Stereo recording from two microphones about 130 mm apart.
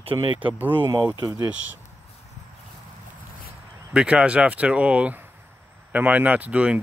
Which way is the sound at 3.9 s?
5° right (ahead or behind).